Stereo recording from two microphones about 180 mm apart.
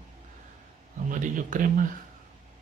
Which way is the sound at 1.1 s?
45° right (ahead or behind).